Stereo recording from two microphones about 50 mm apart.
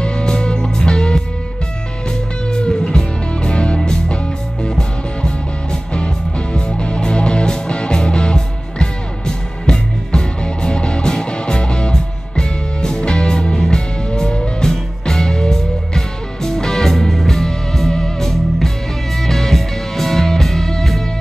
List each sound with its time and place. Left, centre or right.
0.0 s music: centre
2.5 s music: centre